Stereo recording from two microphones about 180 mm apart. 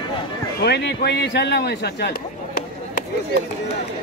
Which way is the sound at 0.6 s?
65° left (ahead or behind).